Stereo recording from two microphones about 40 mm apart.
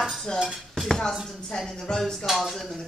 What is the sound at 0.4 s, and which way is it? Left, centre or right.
Dishes, centre.